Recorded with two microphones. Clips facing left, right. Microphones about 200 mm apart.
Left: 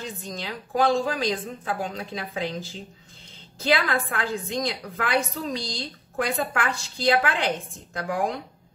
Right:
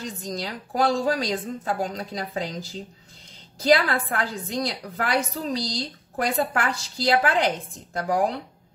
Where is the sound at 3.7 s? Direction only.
40° right (ahead or behind).